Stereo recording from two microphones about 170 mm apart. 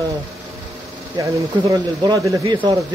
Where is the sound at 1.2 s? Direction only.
20° right (ahead or behind).